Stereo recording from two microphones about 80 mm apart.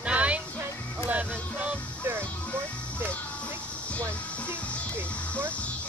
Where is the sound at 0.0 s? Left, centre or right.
Centre.